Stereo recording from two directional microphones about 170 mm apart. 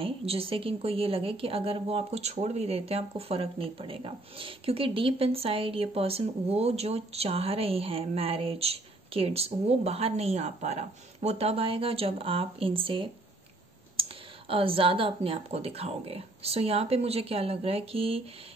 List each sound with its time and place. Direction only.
0.0 s a woman's voice: 35° right (ahead or behind)
14.5 s a woman's voice: 30° right (ahead or behind)